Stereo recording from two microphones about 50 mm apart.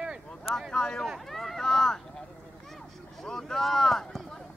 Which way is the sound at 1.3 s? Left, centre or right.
Centre.